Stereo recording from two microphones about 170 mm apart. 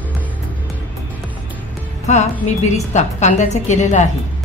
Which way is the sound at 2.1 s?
45° left (ahead or behind).